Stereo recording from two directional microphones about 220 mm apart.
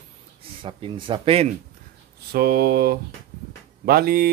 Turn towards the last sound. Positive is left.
turn(degrees=-45)  # may be behind; listen again after turning